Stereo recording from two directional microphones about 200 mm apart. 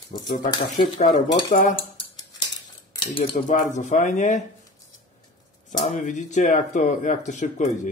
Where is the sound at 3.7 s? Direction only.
35° left (ahead or behind).